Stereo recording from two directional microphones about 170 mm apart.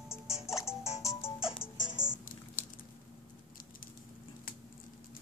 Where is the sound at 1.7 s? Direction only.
90° left.